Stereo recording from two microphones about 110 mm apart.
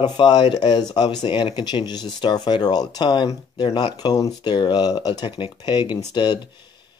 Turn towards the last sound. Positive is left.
turn(degrees=45)  # may be behind; listen again after turning